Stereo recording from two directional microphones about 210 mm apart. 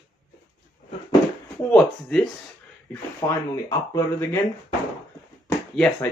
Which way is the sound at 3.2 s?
15° left (ahead or behind).